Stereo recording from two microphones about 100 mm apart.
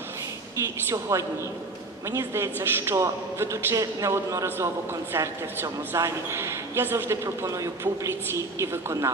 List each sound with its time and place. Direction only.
0.6 s a woman's voice: 30° right (ahead or behind)